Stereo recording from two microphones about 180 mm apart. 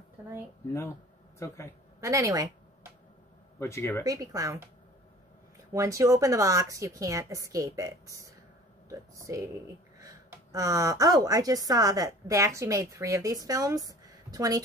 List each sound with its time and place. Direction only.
1.4 s a man's voice: 15° left (ahead or behind)
2.0 s a sound: 15° right (ahead or behind)
3.5 s speech: 15° left (ahead or behind)
4.0 s speech: 20° right (ahead or behind)
5.7 s a woman's voice: 20° right (ahead or behind)